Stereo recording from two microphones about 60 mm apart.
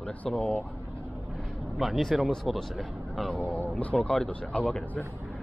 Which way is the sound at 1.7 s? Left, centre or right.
Centre.